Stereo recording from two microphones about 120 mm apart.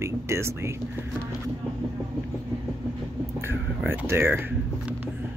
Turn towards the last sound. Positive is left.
turn(degrees=-20)  # may be behind; listen again after turning